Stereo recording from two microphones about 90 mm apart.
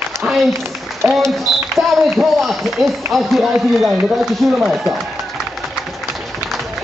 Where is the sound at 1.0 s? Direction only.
20° right (ahead or behind).